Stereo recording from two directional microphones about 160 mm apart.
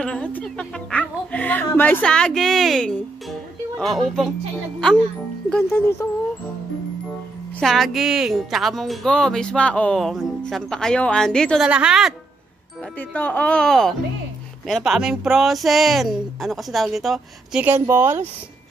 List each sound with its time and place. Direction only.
0.0 s speech: 5° left (ahead or behind)
5.7 s speech: 15° left (ahead or behind)
7.6 s speech: centre (ahead or behind)
13.1 s speech: 10° left (ahead or behind); by 18.3 s 15° right (ahead or behind)